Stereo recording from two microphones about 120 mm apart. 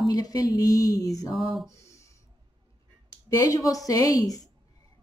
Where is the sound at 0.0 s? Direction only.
30° left (ahead or behind).